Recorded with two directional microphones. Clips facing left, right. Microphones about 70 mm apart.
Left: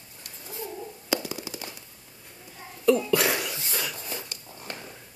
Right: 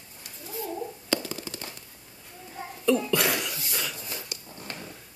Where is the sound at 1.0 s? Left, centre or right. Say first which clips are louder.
Left 2 dB; centre.